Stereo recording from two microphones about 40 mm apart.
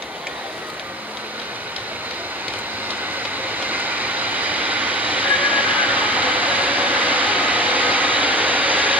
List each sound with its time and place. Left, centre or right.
3.4 s train: right